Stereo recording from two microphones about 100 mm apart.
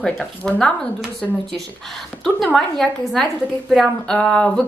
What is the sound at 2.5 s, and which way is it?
A woman's voice, 5° left (ahead or behind).